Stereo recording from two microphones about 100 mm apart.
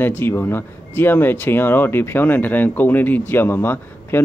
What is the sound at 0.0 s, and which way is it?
Speech, 20° left (ahead or behind).